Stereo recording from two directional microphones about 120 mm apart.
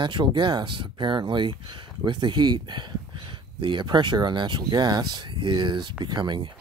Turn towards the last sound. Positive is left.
turn(degrees=-40)  # may be behind; listen again after turning